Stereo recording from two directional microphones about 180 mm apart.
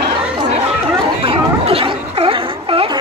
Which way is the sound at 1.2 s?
30° right (ahead or behind).